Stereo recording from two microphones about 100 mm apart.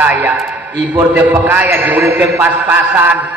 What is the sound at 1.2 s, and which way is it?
A man's voice, 15° right (ahead or behind).